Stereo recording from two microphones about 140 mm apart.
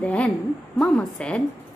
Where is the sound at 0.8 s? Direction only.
10° left (ahead or behind).